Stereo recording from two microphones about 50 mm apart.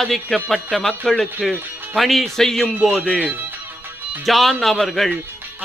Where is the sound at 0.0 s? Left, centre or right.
Centre.